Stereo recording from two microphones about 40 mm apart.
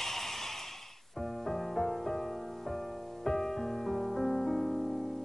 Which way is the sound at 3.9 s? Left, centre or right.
Centre.